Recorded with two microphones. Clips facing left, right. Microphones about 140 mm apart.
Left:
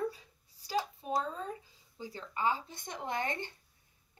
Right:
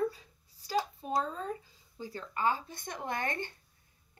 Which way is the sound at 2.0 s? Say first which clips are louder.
Right 1 dB; 50° right (ahead or behind).